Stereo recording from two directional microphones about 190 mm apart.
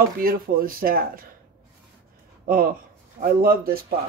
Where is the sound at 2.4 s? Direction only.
50° right (ahead or behind).